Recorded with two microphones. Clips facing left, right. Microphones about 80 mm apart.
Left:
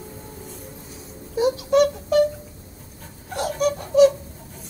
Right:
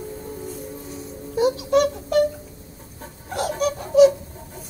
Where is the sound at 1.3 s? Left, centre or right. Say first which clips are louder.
Even; centre.